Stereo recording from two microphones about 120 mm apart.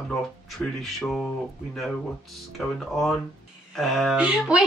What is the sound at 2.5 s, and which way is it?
Speech, centre (ahead or behind).